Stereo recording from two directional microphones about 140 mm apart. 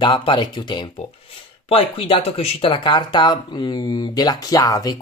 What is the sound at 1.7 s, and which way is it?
Speech, 45° left (ahead or behind).